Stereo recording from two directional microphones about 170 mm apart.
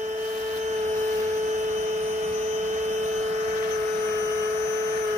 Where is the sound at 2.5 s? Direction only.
45° right (ahead or behind).